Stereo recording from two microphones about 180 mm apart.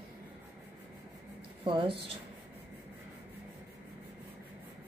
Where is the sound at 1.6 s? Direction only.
30° right (ahead or behind).